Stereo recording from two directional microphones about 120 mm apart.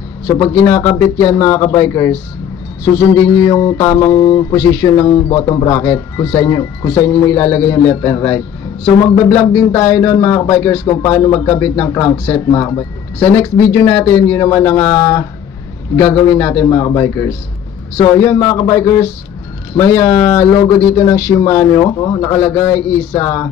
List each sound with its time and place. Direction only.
0.4 s speech: 25° left (ahead or behind)
3.3 s speech: 30° left (ahead or behind)